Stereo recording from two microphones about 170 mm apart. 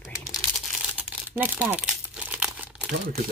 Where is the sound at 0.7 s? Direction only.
10° right (ahead or behind).